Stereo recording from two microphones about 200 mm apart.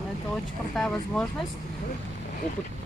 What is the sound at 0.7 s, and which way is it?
Speech, 5° left (ahead or behind).